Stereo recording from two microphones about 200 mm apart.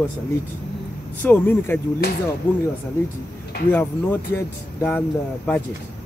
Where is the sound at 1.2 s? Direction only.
10° left (ahead or behind).